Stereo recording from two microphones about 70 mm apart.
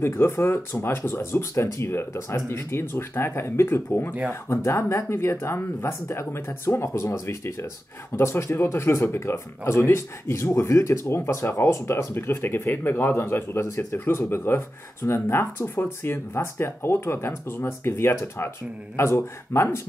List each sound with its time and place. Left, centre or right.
0.0 s speech: left